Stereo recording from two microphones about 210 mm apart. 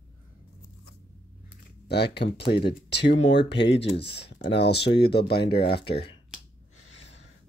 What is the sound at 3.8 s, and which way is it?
Speech, 25° left (ahead or behind).